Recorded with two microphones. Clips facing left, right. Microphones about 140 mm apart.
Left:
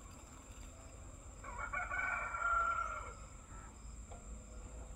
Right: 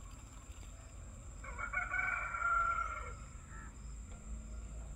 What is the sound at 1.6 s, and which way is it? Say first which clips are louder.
Chicken: right 1 dB; 15° left (ahead or behind).